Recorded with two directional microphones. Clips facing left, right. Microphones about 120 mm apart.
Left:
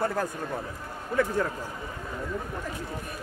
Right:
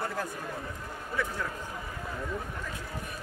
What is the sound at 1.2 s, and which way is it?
Speech, 50° left (ahead or behind).